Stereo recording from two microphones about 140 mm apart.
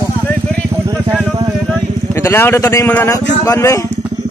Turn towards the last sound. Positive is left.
turn(degrees=20)  # may be behind; listen again after turning